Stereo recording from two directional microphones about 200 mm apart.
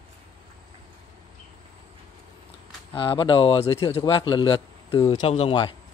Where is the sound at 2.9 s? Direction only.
25° left (ahead or behind).